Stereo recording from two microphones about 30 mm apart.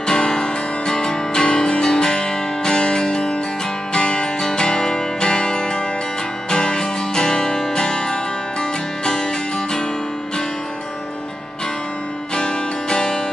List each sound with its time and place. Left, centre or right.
0.0 s music: left
12.4 s music: left